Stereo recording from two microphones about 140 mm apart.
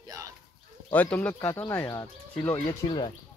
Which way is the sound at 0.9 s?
10° left (ahead or behind).